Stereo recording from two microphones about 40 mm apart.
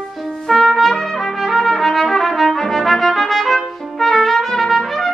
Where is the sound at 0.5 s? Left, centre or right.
Centre.